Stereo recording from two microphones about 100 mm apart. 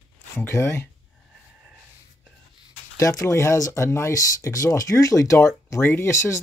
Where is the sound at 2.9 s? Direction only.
35° left (ahead or behind).